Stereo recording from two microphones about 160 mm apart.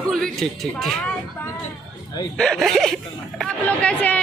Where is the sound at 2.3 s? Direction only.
5° left (ahead or behind).